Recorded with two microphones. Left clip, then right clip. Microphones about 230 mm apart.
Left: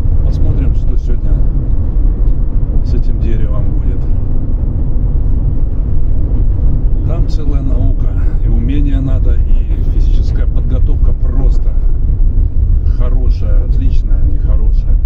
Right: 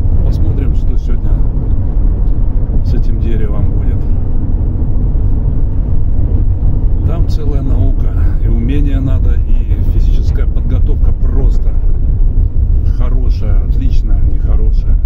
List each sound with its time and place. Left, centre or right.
3.2 s vehicle: right
8.6 s vehicle: right